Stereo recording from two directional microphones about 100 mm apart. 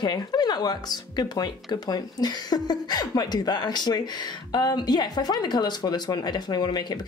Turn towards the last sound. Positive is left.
turn(degrees=45)  # may be behind; listen again after turning